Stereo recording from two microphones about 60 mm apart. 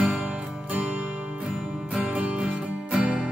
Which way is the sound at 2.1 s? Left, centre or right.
Centre.